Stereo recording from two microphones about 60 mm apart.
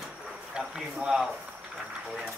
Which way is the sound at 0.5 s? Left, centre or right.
Centre.